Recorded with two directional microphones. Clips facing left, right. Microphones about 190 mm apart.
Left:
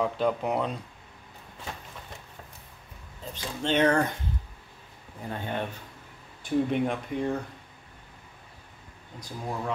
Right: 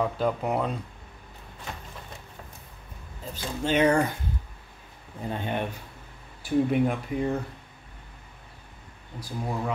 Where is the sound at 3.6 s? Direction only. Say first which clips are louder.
Right 1 dB; 10° right (ahead or behind).